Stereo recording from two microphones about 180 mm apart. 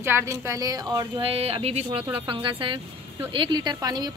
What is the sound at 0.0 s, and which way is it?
A woman's voice, 15° right (ahead or behind).